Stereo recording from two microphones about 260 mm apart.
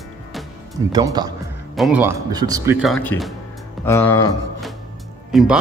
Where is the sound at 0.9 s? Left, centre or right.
Centre.